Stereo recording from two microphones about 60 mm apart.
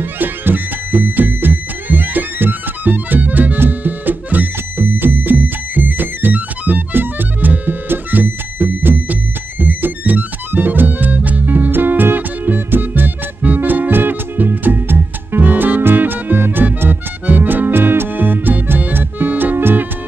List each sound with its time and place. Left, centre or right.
0.0 s music: right